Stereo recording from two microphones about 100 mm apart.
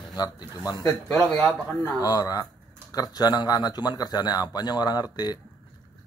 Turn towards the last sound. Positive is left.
turn(degrees=45)  # may be behind; listen again after turning